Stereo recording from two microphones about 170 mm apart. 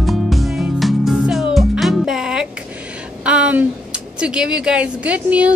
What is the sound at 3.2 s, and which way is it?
A woman's voice, 5° right (ahead or behind).